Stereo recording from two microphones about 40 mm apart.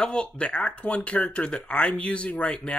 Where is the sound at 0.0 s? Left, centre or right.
Left.